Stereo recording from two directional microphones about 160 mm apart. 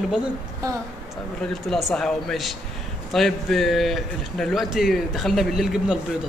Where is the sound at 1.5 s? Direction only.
Centre (ahead or behind).